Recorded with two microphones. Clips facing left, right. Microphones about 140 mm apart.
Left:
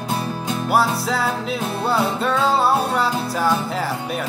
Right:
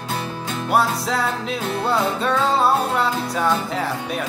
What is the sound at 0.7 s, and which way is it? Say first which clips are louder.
Music: even; centre (ahead or behind).